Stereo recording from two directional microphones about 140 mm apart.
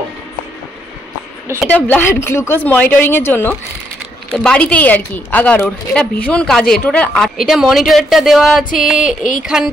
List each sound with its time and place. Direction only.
1.7 s a woman's voice: 10° left (ahead or behind)
8.9 s speech: 70° left (ahead or behind)